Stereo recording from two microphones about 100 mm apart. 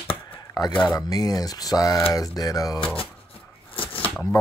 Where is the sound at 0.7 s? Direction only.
55° left (ahead or behind).